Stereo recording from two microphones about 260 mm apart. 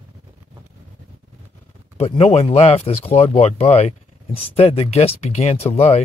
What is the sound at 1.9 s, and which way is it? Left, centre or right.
Speech, left.